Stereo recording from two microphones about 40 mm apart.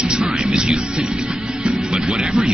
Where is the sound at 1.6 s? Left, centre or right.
Centre.